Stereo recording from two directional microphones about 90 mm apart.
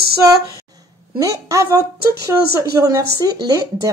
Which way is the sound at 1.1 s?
35° right (ahead or behind).